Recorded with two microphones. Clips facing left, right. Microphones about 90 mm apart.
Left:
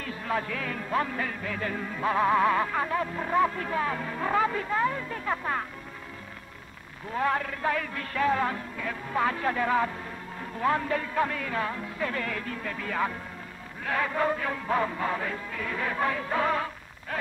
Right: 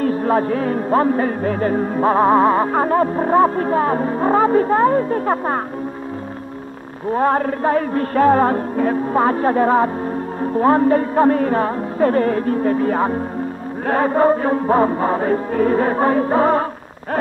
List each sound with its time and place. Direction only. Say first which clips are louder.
0.0 s music: right 14 dB; 40° right (ahead or behind)
7.1 s music: right 11 dB; 40° right (ahead or behind)